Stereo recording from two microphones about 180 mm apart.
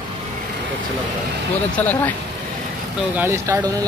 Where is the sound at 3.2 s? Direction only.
15° right (ahead or behind).